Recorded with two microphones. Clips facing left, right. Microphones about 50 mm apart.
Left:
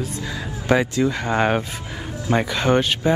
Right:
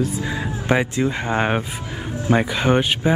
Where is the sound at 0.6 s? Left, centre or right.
Right.